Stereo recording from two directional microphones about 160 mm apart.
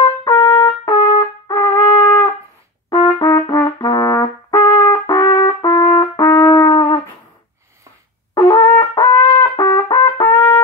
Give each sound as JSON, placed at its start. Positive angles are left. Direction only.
{"t": 0.0, "sound": "trumpet", "side_deg": 25}
{"t": 0.8, "sound": "brass instrument", "side_deg": 30}
{"t": 8.4, "sound": "brass instrument", "side_deg": 25}